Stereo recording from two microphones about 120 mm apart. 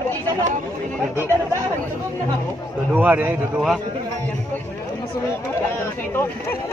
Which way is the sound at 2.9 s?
15° right (ahead or behind).